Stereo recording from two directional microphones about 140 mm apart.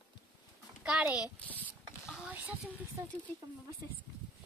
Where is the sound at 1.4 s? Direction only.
10° left (ahead or behind).